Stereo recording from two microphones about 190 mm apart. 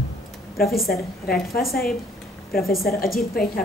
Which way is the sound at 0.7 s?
Centre (ahead or behind).